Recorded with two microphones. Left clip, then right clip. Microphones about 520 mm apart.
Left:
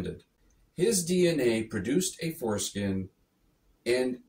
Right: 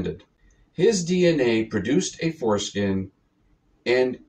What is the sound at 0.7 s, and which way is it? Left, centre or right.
Speech, left.